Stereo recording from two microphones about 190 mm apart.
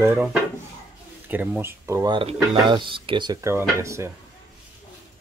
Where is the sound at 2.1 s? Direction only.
25° right (ahead or behind).